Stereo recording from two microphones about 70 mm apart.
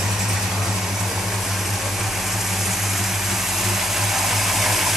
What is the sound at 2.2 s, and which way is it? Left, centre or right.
Vehicle, centre.